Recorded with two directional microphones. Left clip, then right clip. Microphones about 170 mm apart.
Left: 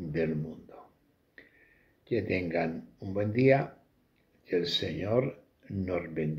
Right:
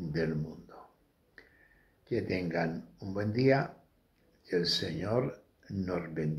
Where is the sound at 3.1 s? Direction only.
10° left (ahead or behind).